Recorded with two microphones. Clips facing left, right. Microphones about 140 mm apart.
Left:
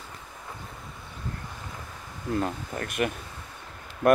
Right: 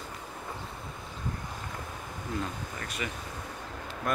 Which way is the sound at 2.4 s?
55° left (ahead or behind).